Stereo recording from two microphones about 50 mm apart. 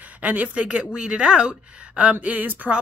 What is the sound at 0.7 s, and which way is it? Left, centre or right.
A woman's voice, centre.